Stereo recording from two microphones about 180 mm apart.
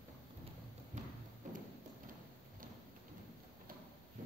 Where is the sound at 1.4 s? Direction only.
45° right (ahead or behind).